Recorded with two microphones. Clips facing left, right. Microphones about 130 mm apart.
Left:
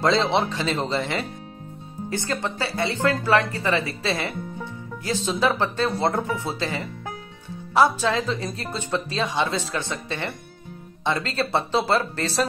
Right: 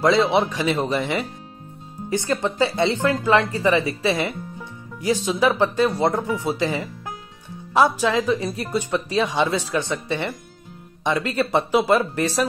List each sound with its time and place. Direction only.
0.0 s speech: 10° right (ahead or behind)